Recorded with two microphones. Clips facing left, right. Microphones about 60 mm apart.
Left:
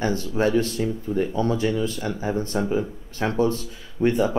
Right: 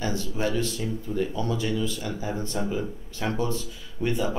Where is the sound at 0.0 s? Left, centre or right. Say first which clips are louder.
Left 6 dB; left.